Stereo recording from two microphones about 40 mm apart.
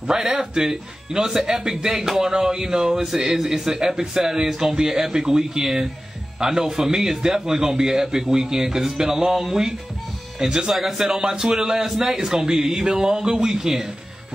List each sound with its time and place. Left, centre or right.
0.0 s speech: centre